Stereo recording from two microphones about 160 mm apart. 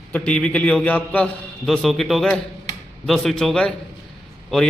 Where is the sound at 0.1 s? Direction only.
10° left (ahead or behind).